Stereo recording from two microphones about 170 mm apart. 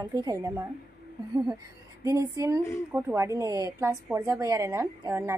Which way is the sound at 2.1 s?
20° right (ahead or behind).